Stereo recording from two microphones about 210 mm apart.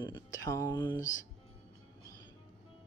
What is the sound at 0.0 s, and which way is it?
Speech, 20° left (ahead or behind).